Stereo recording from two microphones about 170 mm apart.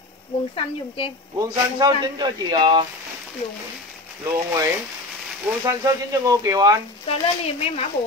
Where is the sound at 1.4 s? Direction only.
25° right (ahead or behind).